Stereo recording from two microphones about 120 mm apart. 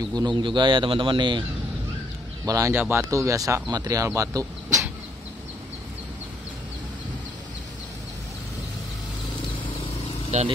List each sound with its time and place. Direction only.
0.1 s a man's voice: 35° right (ahead or behind)
2.4 s speech: 30° right (ahead or behind)
2.7 s speech: 20° right (ahead or behind)
10.3 s speech: 70° right (ahead or behind)